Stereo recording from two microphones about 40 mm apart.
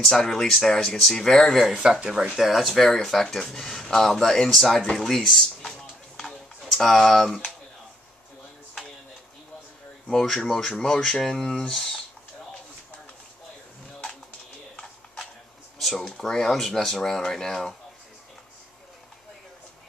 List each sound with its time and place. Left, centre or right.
0.0 s speech: centre
1.8 s speech: centre
2.3 s speech: centre
4.9 s a sound: centre
6.6 s speech: centre
10.1 s speech: centre
16.3 s speech: centre